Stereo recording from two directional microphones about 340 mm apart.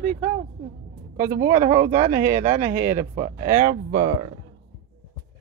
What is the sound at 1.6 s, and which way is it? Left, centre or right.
Speech, right.